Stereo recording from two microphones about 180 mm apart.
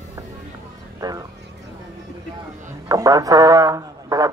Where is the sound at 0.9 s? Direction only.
20° right (ahead or behind).